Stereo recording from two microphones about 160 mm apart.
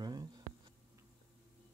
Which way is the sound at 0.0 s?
25° right (ahead or behind).